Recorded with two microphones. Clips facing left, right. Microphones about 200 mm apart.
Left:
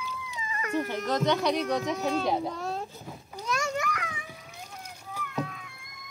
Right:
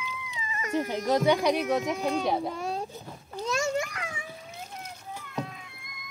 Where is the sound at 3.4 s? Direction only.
25° right (ahead or behind).